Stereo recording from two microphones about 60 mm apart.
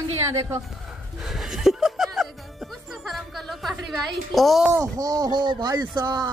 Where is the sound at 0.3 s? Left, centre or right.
Right.